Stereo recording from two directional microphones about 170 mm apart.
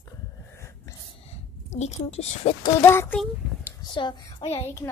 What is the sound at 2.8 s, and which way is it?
Speech, 15° left (ahead or behind).